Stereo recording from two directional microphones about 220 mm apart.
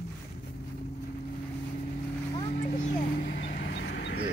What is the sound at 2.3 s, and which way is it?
Vehicle, 35° left (ahead or behind).